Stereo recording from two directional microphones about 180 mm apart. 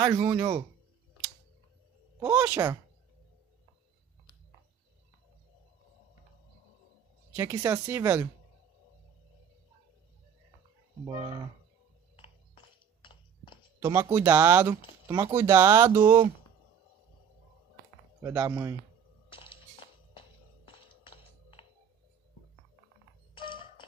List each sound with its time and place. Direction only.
0.2 s speech: 30° right (ahead or behind)
2.2 s speech: 10° right (ahead or behind)
7.3 s speech: 15° right (ahead or behind)
13.0 s a sound: 25° left (ahead or behind)
13.7 s speech: 15° right (ahead or behind)
18.2 s speech: 20° right (ahead or behind)
19.3 s a sound: 30° left (ahead or behind)
20.8 s music: 30° left (ahead or behind)
23.3 s a sound: 25° left (ahead or behind)